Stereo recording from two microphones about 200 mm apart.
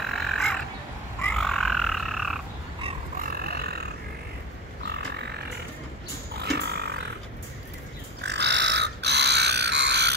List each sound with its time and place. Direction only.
0.0 s crow: centre (ahead or behind)
1.2 s frog: 5° left (ahead or behind)
3.2 s a sound: 50° right (ahead or behind)
4.8 s grunt: 55° right (ahead or behind)
6.4 s a sound: 55° right (ahead or behind)
8.2 s crow: 60° right (ahead or behind)